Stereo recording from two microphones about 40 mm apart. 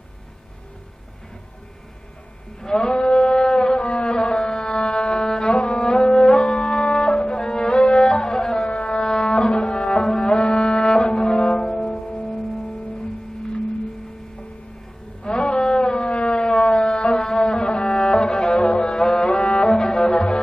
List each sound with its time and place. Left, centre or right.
2.6 s a sound: centre
2.9 s mantra: left
3.3 s wind instrument: centre
3.8 s music: left
8.6 s a sound: left
9.0 s cello: centre
9.9 s music: centre
10.2 s music: left
15.2 s a sound: left
17.1 s music: centre
19.6 s music: centre